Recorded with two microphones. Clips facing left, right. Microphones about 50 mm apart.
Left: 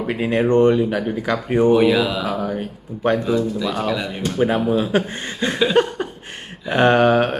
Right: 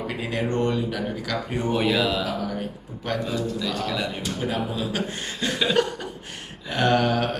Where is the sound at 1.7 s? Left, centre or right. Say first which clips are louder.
Left 5 dB; centre.